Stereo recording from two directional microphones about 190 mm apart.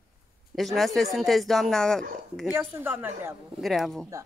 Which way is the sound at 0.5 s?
Centre (ahead or behind).